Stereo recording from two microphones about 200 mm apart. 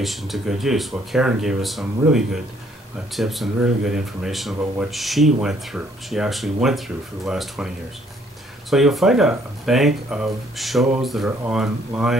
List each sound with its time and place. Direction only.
0.0 s speech: centre (ahead or behind)